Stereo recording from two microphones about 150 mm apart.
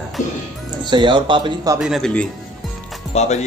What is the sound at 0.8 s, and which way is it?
Speech, 30° right (ahead or behind).